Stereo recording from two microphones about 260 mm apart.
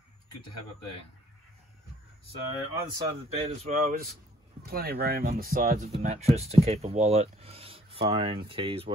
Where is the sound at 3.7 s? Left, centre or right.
Right.